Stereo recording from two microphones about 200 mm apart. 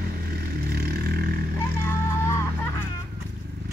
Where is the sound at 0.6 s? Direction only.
50° right (ahead or behind).